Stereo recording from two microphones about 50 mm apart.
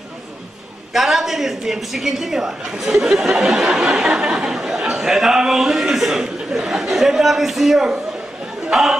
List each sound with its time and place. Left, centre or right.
0.9 s a woman's voice: centre